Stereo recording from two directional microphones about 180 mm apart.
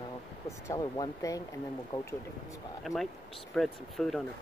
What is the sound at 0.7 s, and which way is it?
Speech, 20° left (ahead or behind).